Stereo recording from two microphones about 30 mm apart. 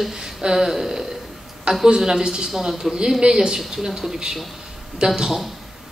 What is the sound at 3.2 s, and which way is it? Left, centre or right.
Speech, right.